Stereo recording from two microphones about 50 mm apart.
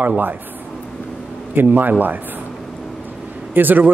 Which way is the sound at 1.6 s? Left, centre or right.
Right.